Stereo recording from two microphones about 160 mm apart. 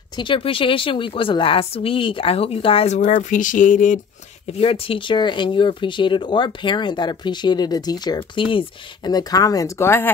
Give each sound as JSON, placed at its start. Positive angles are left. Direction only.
{"t": 0.1, "sound": "a woman's voice", "side_deg": 30}
{"t": 3.0, "sound": "speech", "side_deg": 55}
{"t": 4.5, "sound": "speech", "side_deg": 40}